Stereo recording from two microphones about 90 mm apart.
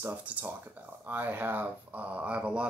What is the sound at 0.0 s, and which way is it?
Speech, 15° right (ahead or behind).